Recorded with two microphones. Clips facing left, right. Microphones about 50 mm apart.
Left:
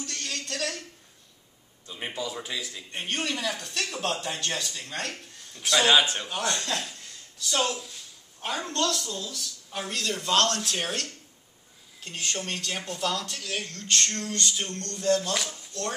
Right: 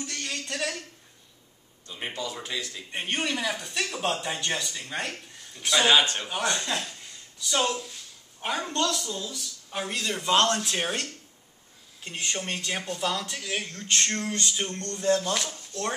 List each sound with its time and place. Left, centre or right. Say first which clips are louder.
0.0 s a sound: right 1 dB; centre
1.9 s speech: even; centre
2.9 s speech: right 2 dB; centre
7.0 s a sound: even; centre
8.4 s speech: right 1 dB; centre
15.3 s speech: even; centre